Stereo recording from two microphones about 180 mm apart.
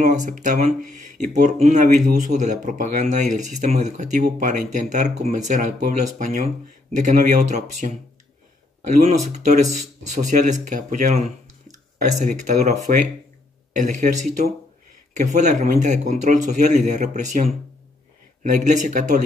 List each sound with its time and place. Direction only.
0.0 s speech: 45° right (ahead or behind)